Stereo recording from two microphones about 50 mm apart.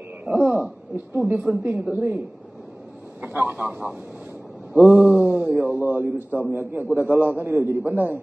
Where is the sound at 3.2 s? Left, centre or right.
Right.